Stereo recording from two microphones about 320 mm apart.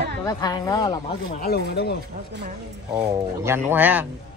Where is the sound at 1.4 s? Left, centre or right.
Left.